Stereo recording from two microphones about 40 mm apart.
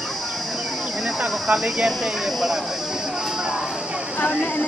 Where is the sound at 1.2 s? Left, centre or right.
Centre.